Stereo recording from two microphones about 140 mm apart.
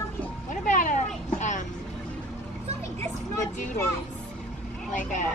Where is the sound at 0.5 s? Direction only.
70° left (ahead or behind).